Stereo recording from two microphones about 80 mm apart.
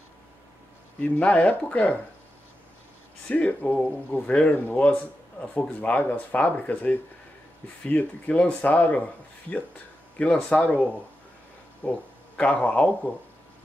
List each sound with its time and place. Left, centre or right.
1.0 s speech: centre
3.3 s speech: centre